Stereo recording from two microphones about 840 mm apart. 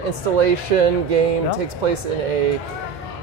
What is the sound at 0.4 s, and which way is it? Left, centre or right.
Speech, right.